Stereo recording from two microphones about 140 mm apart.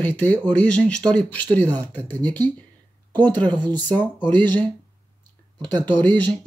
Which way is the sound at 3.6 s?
30° right (ahead or behind).